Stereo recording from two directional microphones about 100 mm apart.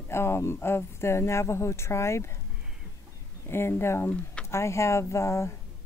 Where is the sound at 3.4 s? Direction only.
25° left (ahead or behind).